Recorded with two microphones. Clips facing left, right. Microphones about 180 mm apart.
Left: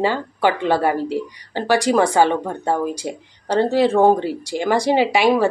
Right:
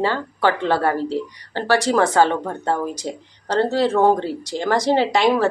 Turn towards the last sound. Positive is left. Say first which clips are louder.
# left 1 dB
turn(degrees=10)  # may be behind; listen again after turning